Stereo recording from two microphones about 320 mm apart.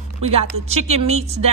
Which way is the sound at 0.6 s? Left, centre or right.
Centre.